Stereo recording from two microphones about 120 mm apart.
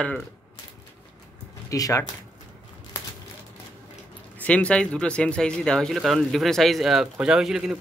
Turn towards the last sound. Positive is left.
turn(degrees=-5)  # may be behind; listen again after turning